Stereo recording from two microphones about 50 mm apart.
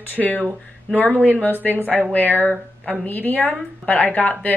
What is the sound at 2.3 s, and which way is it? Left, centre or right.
Speech, right.